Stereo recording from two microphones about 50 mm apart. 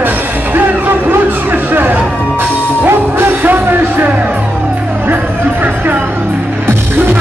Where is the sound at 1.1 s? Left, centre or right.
Right.